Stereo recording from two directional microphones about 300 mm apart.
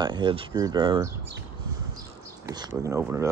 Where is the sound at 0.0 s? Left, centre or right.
Centre.